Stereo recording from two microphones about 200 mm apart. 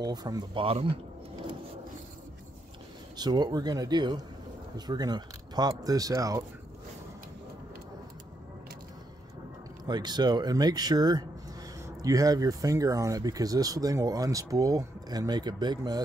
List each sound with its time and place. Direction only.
0.0 s speech: 20° right (ahead or behind)
3.2 s speech: 20° right (ahead or behind)
9.8 s speech: 20° right (ahead or behind)